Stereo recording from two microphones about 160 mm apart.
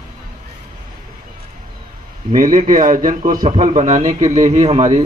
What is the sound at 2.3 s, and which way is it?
A man's voice, 55° right (ahead or behind).